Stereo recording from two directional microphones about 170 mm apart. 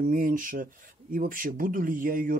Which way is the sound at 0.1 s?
55° right (ahead or behind).